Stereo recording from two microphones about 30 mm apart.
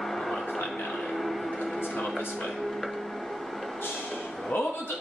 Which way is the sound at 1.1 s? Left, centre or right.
Centre.